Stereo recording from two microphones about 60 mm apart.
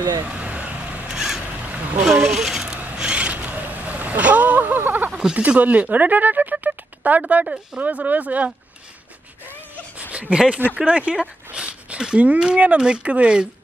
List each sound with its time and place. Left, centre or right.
0.3 s vehicle: right
1.1 s boat: centre
2.0 s a sound: centre
3.0 s vehicle: centre
3.3 s vehicle: right
5.1 s speech: centre
6.5 s a sound: right
7.8 s speech: right
10.1 s a sound: right
10.8 s speech: centre